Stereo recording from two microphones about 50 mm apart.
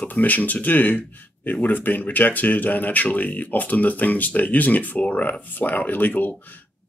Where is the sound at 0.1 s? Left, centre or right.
Left.